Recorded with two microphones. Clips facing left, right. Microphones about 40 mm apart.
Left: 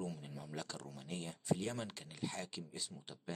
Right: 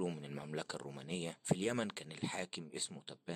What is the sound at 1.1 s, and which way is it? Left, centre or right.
Speech, right.